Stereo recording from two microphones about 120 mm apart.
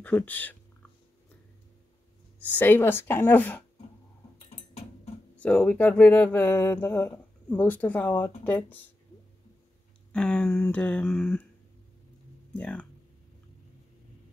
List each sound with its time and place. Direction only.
0.0 s speech: 15° left (ahead or behind)
2.5 s speech: 15° left (ahead or behind)
5.4 s speech: 10° left (ahead or behind)
10.1 s speech: 10° left (ahead or behind)
12.5 s speech: 10° left (ahead or behind)